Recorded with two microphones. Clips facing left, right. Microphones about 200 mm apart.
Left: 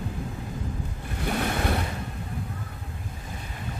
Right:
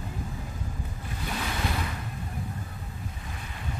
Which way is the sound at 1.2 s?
55° left (ahead or behind).